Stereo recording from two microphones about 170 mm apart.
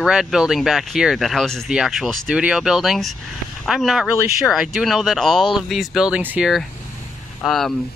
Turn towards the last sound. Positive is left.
turn(degrees=0)  # may be behind; listen again after turning